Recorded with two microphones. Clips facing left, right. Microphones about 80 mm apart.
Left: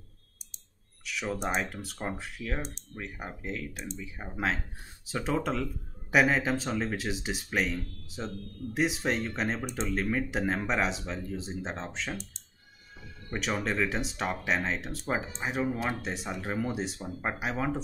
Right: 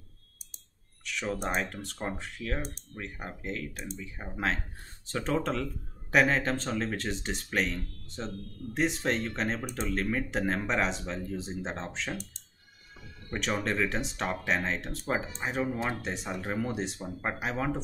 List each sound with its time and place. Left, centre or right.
1.0 s speech: centre
13.3 s speech: centre